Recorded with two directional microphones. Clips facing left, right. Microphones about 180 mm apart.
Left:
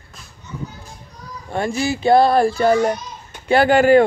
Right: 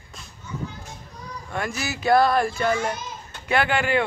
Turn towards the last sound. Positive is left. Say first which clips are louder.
# left 10 dB
turn(degrees=40)  # may be behind; listen again after turning